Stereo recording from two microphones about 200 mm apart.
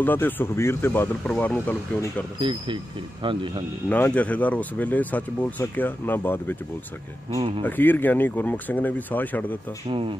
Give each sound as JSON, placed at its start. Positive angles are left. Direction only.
{"t": 0.0, "sound": "speech", "side_deg": 10}
{"t": 2.4, "sound": "speech", "side_deg": -25}
{"t": 3.9, "sound": "speech", "side_deg": 5}
{"t": 7.3, "sound": "speech", "side_deg": -25}
{"t": 7.6, "sound": "speech", "side_deg": 10}
{"t": 9.8, "sound": "speech", "side_deg": -25}